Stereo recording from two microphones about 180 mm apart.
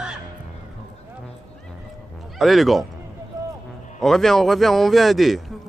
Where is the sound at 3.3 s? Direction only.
20° right (ahead or behind).